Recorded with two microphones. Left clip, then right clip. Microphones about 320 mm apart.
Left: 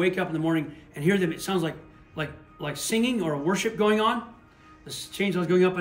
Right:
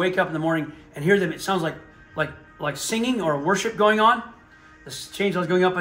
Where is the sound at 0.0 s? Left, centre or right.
Centre.